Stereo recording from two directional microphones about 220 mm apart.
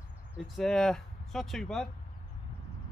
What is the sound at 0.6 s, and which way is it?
Speech, centre (ahead or behind).